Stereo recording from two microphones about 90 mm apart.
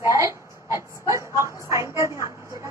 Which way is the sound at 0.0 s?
35° right (ahead or behind).